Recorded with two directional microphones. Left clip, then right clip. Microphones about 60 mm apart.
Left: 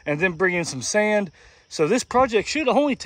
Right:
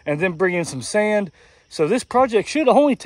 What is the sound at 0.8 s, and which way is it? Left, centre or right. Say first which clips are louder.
Speech: right 1 dB; left.